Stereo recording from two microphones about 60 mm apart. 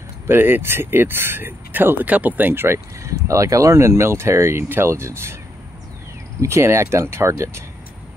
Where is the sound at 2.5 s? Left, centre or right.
Right.